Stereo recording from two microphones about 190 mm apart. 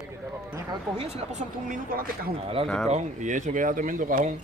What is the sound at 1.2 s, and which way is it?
Speech, 40° right (ahead or behind).